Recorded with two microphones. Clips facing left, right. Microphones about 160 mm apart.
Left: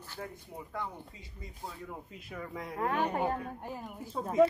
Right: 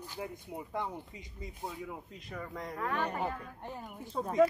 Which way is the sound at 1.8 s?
5° left (ahead or behind).